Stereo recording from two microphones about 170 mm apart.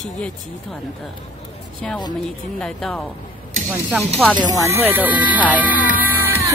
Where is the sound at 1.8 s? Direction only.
5° left (ahead or behind).